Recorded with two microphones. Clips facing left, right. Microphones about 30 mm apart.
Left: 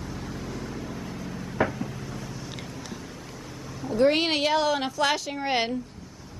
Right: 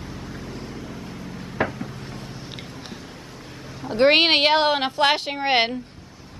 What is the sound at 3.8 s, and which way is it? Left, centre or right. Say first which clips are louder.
Speech: right 5 dB; right.